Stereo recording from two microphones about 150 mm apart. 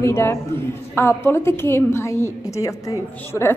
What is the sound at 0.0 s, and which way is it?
A woman's voice, 15° left (ahead or behind).